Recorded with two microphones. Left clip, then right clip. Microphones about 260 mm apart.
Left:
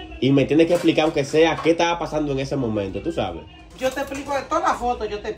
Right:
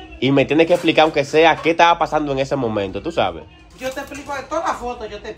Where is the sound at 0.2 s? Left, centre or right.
Right.